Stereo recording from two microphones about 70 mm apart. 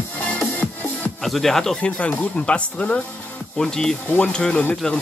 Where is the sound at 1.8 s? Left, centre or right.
Centre.